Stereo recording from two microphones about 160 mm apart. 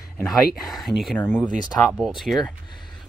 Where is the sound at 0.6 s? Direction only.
Centre (ahead or behind).